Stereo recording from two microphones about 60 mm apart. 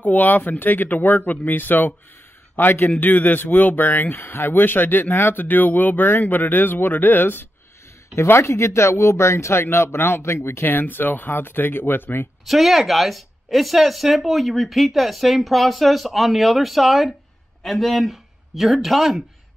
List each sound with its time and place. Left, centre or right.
0.0 s speech: left
8.2 s speech: left
12.4 s speech: centre